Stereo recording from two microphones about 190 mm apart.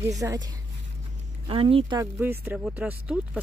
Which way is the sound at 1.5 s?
30° right (ahead or behind).